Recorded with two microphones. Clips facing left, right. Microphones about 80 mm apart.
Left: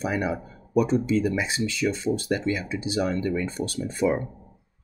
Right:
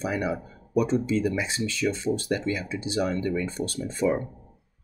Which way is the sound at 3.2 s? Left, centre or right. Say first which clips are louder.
Left 1 dB; left.